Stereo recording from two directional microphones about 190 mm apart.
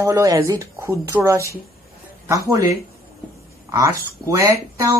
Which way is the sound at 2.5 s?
15° right (ahead or behind).